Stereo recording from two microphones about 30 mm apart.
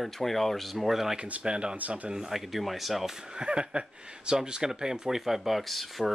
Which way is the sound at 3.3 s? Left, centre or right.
Right.